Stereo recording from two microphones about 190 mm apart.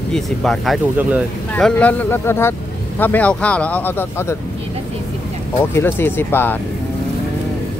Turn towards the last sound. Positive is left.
turn(degrees=10)  # may be behind; listen again after turning